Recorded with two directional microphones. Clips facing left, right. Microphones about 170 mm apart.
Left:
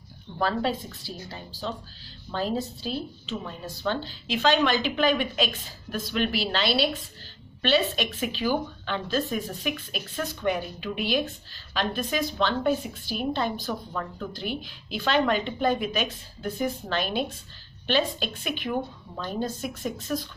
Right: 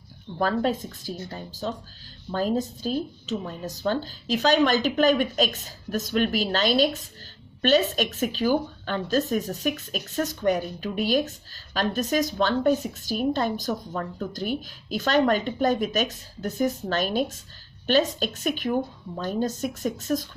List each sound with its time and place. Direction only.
0.4 s speech: 45° right (ahead or behind)